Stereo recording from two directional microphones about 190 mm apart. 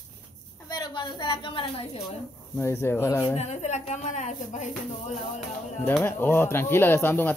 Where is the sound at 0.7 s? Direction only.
20° left (ahead or behind).